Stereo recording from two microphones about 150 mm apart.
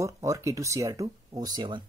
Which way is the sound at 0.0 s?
20° right (ahead or behind).